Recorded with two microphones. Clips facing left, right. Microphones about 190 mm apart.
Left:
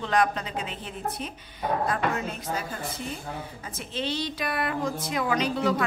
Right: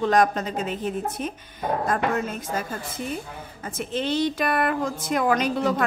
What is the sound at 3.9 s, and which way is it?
A woman's voice, 50° right (ahead or behind).